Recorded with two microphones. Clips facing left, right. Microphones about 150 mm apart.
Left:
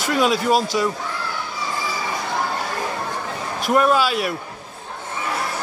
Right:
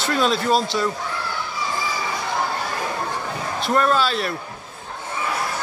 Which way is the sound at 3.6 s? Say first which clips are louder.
Left 2 dB; 10° left (ahead or behind).